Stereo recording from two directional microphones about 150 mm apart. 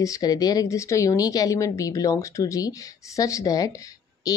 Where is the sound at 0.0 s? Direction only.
25° left (ahead or behind).